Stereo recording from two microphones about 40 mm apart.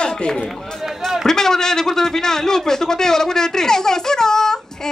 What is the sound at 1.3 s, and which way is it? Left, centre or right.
A man's voice, centre.